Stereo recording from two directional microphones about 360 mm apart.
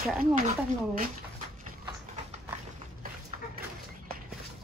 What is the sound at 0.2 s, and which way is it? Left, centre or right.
Speech, right.